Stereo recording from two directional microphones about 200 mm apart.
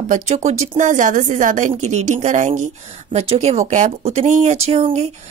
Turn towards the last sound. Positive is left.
turn(degrees=-35)  # may be behind; listen again after turning